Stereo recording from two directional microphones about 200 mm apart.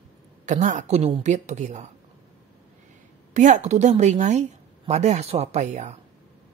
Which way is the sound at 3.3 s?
35° right (ahead or behind).